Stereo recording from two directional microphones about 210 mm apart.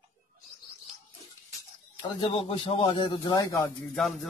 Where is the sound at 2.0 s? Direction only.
25° left (ahead or behind).